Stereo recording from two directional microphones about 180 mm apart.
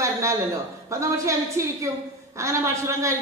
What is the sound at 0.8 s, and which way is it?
A woman's voice, 15° right (ahead or behind).